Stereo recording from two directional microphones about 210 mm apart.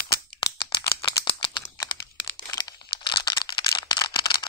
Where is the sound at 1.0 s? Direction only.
25° left (ahead or behind).